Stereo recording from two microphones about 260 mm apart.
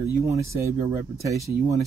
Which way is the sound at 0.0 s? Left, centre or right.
Centre.